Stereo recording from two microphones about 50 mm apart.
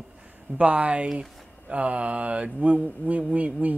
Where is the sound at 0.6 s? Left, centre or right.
Right.